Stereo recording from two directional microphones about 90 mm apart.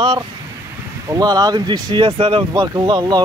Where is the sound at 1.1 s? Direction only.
45° right (ahead or behind); by 2.5 s 70° right (ahead or behind).